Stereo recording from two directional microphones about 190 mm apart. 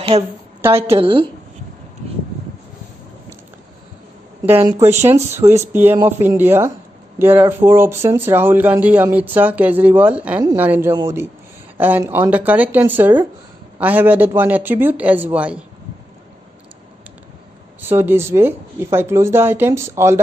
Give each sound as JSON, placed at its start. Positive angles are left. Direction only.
{"t": 0.1, "sound": "speech", "side_deg": -30}
{"t": 0.6, "sound": "a woman's voice", "side_deg": -10}
{"t": 0.9, "sound": "a woman's voice", "side_deg": -25}
{"t": 4.8, "sound": "speech", "side_deg": -15}
{"t": 5.1, "sound": "speech", "side_deg": -35}
{"t": 5.7, "sound": "speech", "side_deg": -10}
{"t": 17.8, "sound": "speech", "side_deg": -10}